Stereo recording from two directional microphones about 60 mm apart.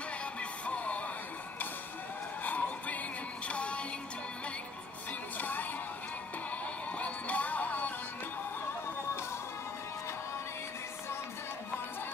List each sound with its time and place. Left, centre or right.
0.2 s music: left
2.4 s music: left
5.4 s music: left
7.0 s music: left